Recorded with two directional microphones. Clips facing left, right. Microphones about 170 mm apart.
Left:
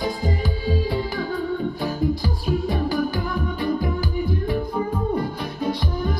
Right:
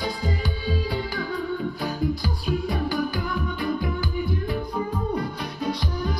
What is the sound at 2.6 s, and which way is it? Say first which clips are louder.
Music: left 3 dB; 25° left (ahead or behind).